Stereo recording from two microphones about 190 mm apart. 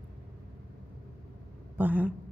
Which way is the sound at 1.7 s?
10° right (ahead or behind).